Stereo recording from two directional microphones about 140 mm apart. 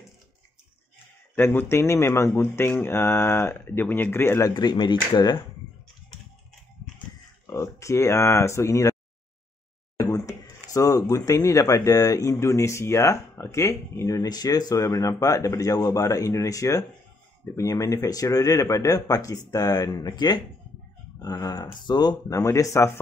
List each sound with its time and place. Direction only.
1.3 s speech: 15° left (ahead or behind); by 5.4 s 30° left (ahead or behind)
7.4 s speech: 20° left (ahead or behind)
9.9 s speech: 20° left (ahead or behind)